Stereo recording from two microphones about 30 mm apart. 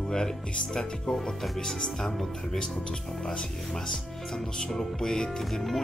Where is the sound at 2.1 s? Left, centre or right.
Centre.